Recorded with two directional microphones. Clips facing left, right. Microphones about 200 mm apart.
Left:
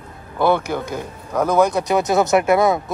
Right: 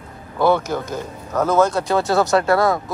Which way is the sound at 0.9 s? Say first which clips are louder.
Even; 10° left (ahead or behind).